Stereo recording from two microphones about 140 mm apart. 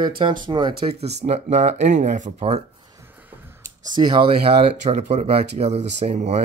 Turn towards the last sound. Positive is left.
turn(degrees=-55)  # may be behind; listen again after turning